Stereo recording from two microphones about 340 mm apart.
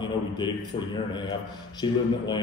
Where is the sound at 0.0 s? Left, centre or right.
Centre.